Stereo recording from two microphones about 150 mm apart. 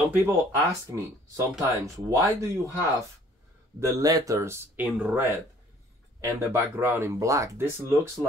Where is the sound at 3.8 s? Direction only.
20° right (ahead or behind).